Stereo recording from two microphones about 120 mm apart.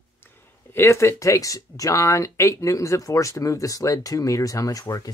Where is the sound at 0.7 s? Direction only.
20° left (ahead or behind).